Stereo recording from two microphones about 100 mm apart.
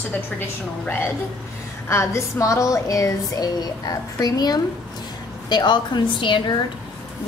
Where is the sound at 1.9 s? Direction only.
25° left (ahead or behind).